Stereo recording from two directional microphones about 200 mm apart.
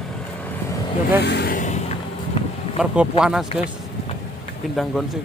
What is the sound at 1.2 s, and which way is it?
Speech, 55° left (ahead or behind).